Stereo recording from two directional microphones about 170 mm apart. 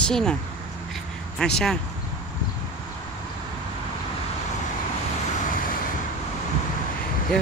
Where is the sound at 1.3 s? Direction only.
5° left (ahead or behind).